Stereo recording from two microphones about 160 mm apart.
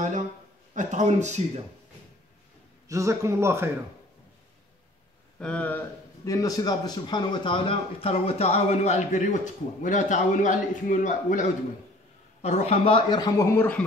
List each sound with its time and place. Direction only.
0.7 s speech: 50° right (ahead or behind)
2.9 s speech: 20° right (ahead or behind)
5.4 s a man's voice: 10° left (ahead or behind)
6.3 s a man's voice: 20° left (ahead or behind); by 11.4 s 50° left (ahead or behind)
12.4 s speech: 40° left (ahead or behind); by 13.8 s 10° left (ahead or behind)